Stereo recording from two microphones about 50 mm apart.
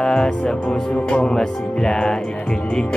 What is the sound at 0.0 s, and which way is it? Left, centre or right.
Music, centre.